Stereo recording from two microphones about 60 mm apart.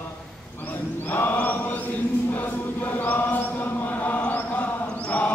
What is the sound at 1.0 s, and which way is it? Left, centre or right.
Chant, left.